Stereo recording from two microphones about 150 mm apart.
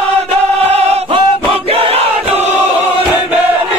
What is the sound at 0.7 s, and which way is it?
Chant, 45° right (ahead or behind).